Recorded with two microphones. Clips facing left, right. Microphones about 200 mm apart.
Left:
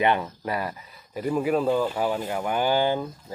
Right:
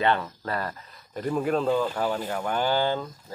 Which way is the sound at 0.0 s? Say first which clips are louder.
Left 2 dB; 15° left (ahead or behind).